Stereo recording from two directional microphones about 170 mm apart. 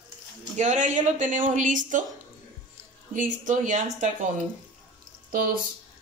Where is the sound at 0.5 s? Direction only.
45° right (ahead or behind).